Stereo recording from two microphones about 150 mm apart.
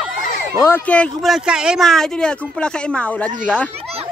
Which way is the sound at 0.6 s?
10° left (ahead or behind).